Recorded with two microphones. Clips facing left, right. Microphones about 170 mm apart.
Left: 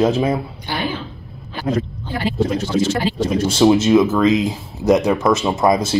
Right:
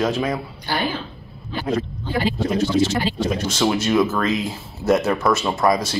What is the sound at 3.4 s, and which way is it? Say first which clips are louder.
Speech: left 9 dB; 30° left (ahead or behind).